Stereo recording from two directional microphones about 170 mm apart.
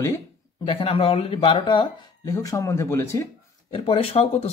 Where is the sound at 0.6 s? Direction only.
35° left (ahead or behind); by 3.2 s 15° left (ahead or behind).